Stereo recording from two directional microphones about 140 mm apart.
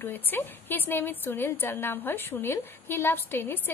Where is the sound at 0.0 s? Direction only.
15° left (ahead or behind).